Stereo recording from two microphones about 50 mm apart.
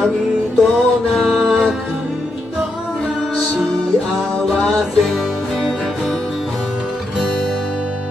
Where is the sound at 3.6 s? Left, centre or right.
Centre.